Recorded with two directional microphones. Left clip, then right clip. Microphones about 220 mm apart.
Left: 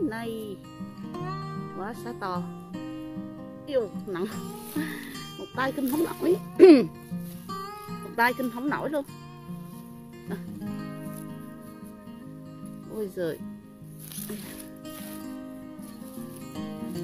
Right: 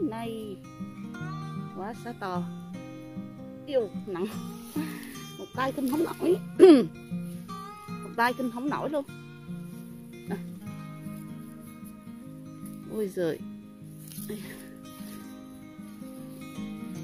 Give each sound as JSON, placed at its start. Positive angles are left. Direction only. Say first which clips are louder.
{"t": 0.1, "sound": "music", "louder": "left 2 dB", "side_deg": -5}
{"t": 1.1, "sound": "music", "louder": "left 6 dB", "side_deg": 55}
{"t": 1.8, "sound": "speech", "louder": "left 1 dB", "side_deg": -5}
{"t": 3.6, "sound": "speech", "louder": "even", "side_deg": -10}
{"t": 8.2, "sound": "speech", "louder": "left 2 dB", "side_deg": -10}
{"t": 12.9, "sound": "speech", "louder": "right 1 dB", "side_deg": -25}